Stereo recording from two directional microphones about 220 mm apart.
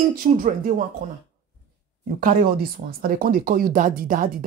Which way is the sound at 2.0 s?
40° right (ahead or behind).